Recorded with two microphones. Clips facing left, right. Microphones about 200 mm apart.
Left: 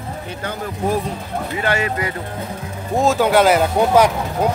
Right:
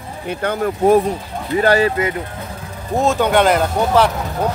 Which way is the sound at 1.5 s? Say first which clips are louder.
Right 8 dB; 35° right (ahead or behind).